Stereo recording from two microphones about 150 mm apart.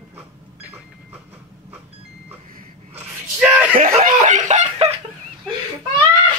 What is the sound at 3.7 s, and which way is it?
Snicker, 60° right (ahead or behind).